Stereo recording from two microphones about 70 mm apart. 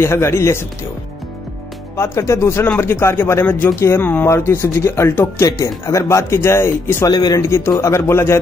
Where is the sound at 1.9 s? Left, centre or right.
Left.